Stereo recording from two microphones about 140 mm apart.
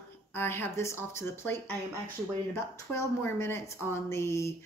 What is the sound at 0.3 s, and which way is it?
A woman's voice, 15° left (ahead or behind).